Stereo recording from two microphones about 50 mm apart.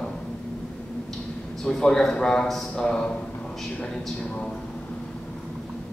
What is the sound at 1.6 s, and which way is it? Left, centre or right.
A man's voice, centre.